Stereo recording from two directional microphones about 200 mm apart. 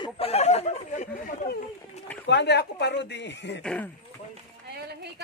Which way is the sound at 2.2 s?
60° left (ahead or behind).